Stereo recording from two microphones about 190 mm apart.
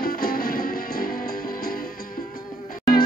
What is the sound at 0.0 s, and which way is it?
Music, 50° left (ahead or behind).